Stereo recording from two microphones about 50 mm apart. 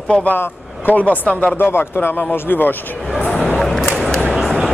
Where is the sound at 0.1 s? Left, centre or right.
Left.